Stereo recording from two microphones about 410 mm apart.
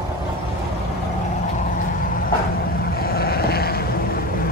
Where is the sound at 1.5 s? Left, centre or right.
Centre.